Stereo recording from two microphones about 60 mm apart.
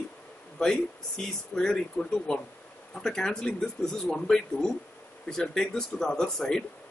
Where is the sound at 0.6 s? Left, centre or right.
Centre.